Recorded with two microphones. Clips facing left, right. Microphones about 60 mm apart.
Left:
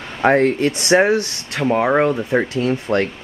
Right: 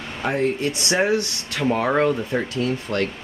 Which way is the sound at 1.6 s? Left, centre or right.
Centre.